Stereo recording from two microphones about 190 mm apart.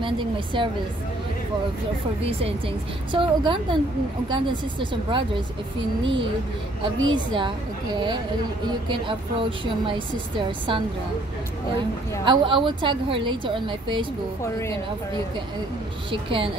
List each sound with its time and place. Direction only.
0.0 s a woman's voice: 25° right (ahead or behind)
3.1 s a woman's voice: 25° right (ahead or behind)
12.3 s a woman's voice: 25° right (ahead or behind)
16.1 s a woman's voice: 25° right (ahead or behind)